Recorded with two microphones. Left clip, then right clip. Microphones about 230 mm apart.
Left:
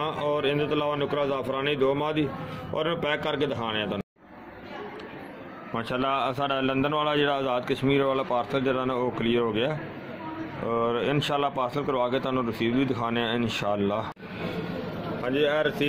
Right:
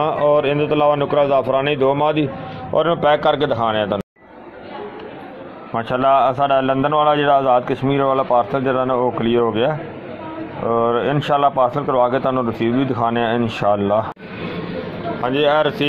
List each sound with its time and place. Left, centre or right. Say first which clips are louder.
0.0 s a man's voice: right 11 dB; centre
5.8 s a man's voice: right 12 dB; centre
15.2 s speech: right 9 dB; right